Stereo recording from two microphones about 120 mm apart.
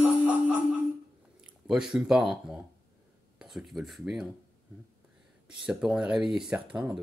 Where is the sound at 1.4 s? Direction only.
5° right (ahead or behind).